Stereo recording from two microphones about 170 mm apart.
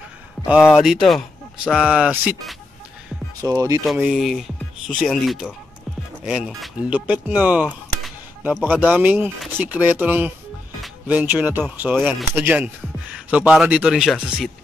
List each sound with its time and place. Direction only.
0.7 s speech: centre (ahead or behind)
3.4 s speech: 20° right (ahead or behind)
3.8 s speech: centre (ahead or behind)
8.0 s music: centre (ahead or behind)
8.6 s speech: 10° right (ahead or behind)